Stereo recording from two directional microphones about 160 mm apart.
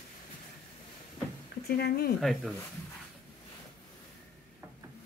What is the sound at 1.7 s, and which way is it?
Speech, 85° left.